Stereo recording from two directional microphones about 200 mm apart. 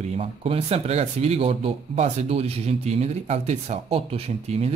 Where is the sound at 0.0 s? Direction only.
30° right (ahead or behind).